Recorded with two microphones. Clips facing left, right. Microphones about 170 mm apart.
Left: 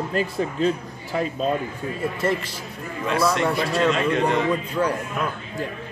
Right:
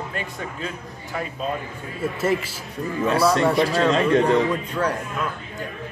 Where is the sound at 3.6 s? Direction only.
30° right (ahead or behind).